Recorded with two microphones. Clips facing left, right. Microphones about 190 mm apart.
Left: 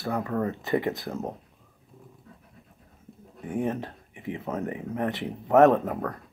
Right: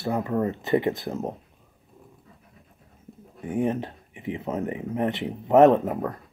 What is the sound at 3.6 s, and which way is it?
Speech, 20° right (ahead or behind).